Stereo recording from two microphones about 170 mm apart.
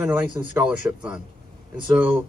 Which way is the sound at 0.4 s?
20° right (ahead or behind).